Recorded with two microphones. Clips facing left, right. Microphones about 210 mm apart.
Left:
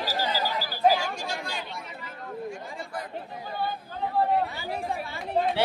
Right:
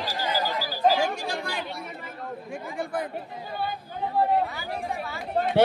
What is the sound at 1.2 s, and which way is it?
Chatter, 55° right (ahead or behind).